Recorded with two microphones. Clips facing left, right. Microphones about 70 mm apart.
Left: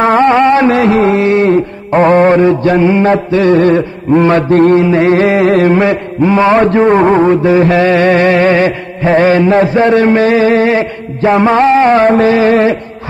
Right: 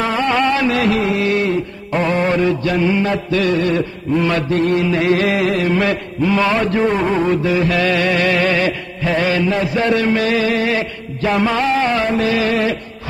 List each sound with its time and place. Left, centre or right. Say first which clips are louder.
0.0 s music: left 10 dB; left
0.3 s music: left 8 dB; left
3.3 s mantra: left 8 dB; left
5.5 s a sound: left 9 dB; left
5.8 s mantra: left 7 dB; left